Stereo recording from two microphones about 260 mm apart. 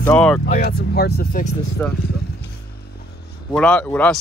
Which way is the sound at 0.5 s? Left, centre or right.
Left.